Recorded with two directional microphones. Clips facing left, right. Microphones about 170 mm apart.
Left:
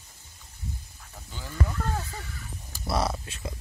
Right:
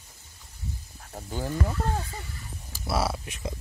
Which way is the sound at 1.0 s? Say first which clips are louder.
Right 11 dB; 45° right (ahead or behind).